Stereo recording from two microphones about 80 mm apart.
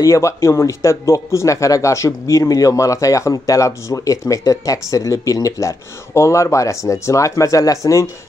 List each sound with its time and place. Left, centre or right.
0.0 s speech: left